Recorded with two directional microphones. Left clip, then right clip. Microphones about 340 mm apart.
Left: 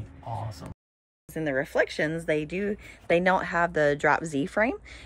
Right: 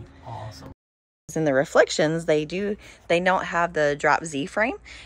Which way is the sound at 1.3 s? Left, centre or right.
Right.